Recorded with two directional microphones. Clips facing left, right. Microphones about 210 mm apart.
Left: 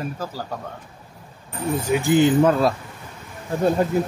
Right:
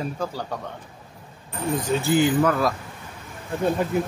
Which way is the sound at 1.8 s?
15° left (ahead or behind).